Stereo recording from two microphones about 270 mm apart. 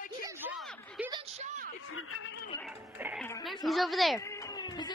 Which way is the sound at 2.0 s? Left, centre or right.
Left.